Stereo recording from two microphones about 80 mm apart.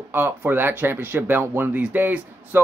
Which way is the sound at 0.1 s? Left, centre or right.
Right.